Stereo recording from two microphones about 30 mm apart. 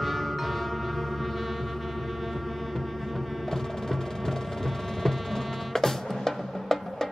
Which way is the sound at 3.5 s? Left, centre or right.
Centre.